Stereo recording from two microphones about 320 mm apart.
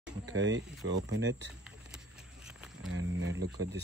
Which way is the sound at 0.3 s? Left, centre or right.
Right.